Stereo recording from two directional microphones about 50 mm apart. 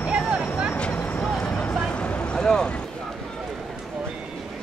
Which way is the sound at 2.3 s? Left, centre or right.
Centre.